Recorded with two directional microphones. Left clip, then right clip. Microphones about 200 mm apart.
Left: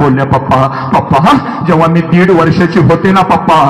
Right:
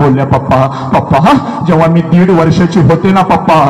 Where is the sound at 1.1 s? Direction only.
30° right (ahead or behind).